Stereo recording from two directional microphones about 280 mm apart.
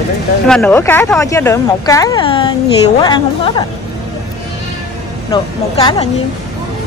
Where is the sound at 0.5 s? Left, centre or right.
Centre.